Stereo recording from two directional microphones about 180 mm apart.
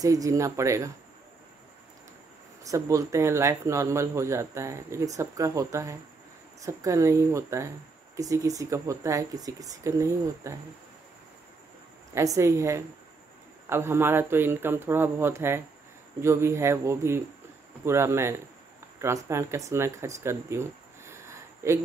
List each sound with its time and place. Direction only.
0.0 s speech: 20° right (ahead or behind)
2.6 s speech: 20° right (ahead or behind)
12.1 s speech: 15° right (ahead or behind)
20.2 s a sound: 15° right (ahead or behind)